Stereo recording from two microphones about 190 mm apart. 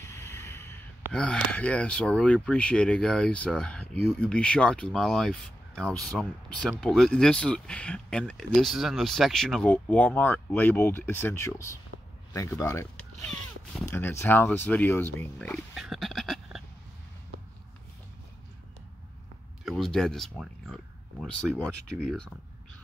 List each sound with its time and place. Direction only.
0.0 s a sound: 15° left (ahead or behind)
1.1 s speech: 5° left (ahead or behind)
19.6 s speech: centre (ahead or behind)